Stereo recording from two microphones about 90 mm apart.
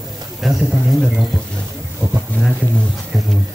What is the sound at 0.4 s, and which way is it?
Speech, centre (ahead or behind).